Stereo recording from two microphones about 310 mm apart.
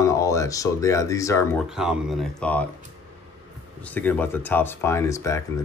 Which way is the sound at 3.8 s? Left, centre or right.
Centre.